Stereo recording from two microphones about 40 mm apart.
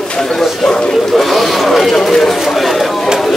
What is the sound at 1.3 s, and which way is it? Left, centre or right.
Speech, centre.